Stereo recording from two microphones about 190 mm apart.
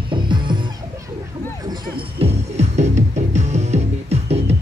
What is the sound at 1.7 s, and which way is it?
Music, 30° right (ahead or behind).